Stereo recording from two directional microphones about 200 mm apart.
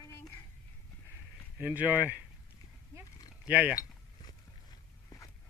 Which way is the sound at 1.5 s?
10° right (ahead or behind).